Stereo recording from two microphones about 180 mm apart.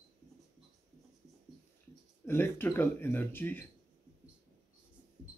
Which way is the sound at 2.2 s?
10° left (ahead or behind).